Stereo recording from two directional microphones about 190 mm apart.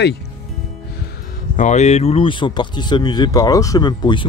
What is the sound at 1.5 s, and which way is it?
Speech, 40° left (ahead or behind).